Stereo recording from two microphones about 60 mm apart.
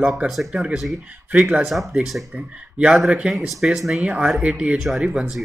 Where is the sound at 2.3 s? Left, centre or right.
Right.